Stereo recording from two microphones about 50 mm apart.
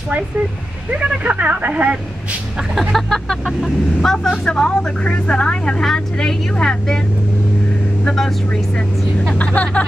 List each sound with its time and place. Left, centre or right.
0.9 s speech: right
2.9 s speech: centre
9.4 s speech: left